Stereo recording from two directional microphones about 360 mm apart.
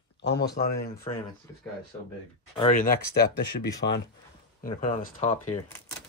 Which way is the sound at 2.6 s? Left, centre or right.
Left.